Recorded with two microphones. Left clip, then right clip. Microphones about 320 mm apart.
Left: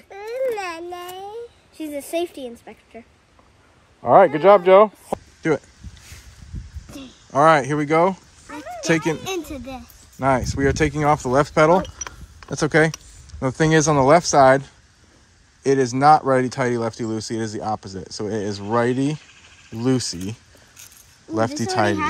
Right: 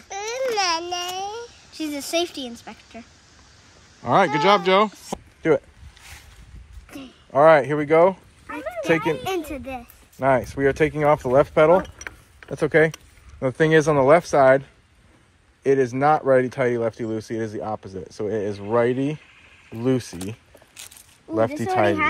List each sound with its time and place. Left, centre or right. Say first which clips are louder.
0.1 s babbling: even; centre
4.0 s speech: left 5 dB; centre
6.9 s speech: even; centre
11.8 s keys jangling: left 2 dB; centre
12.4 s speech: even; centre
15.6 s speech: left 3 dB; centre
21.4 s speech: even; centre